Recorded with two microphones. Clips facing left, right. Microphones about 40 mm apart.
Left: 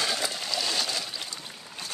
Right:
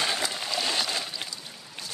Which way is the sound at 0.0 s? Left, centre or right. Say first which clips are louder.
Right 1 dB; right.